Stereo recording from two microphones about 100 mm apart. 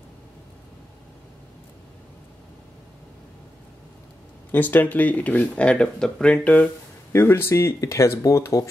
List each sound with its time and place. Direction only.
4.5 s speech: 20° left (ahead or behind)
7.1 s speech: 25° left (ahead or behind)